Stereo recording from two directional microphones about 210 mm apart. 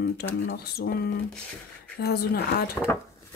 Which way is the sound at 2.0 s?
50° left (ahead or behind).